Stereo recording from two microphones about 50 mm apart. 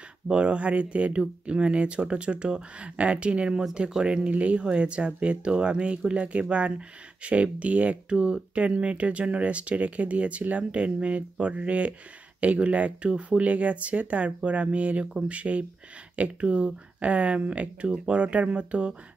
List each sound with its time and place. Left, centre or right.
0.3 s speech: right